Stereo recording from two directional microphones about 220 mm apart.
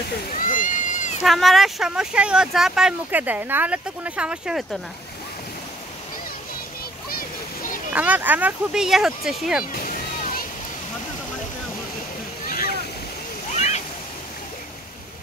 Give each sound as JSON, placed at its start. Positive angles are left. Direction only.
{"t": 0.3, "sound": "a sound", "side_deg": 35}
{"t": 1.2, "sound": "speech", "side_deg": 0}
{"t": 7.1, "sound": "splash", "side_deg": 40}
{"t": 7.9, "sound": "speech", "side_deg": -5}
{"t": 12.4, "sound": "boat", "side_deg": 40}
{"t": 13.6, "sound": "splash", "side_deg": 30}